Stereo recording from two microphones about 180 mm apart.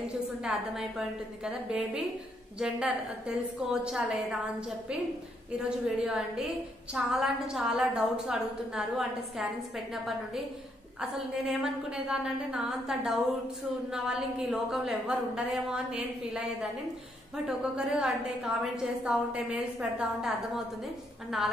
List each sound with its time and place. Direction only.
0.4 s a woman's voice: centre (ahead or behind)
5.5 s a woman's voice: 5° right (ahead or behind)
11.0 s a woman's voice: centre (ahead or behind)